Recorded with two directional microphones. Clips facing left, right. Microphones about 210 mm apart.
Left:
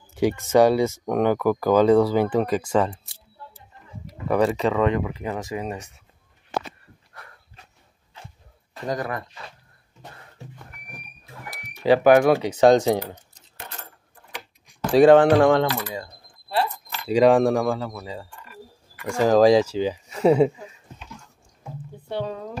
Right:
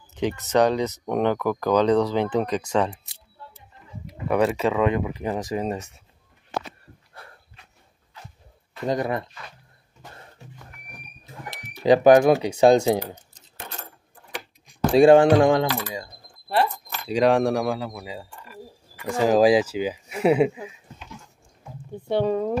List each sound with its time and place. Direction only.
0.1 s speech: 10° left (ahead or behind)
4.0 s speech: centre (ahead or behind); by 5.5 s 20° right (ahead or behind)
5.5 s speech: 35° right (ahead or behind)
8.8 s speech: 25° right (ahead or behind)
11.8 s speech: 20° right (ahead or behind)
12.4 s speech: 10° right (ahead or behind)
15.2 s speech: 15° right (ahead or behind)
17.1 s speech: centre (ahead or behind)
22.1 s speech: 60° right (ahead or behind)